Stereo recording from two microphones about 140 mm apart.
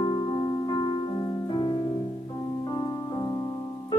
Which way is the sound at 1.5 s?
30° left (ahead or behind).